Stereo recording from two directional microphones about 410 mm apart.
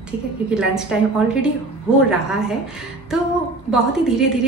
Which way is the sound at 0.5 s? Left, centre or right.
Centre.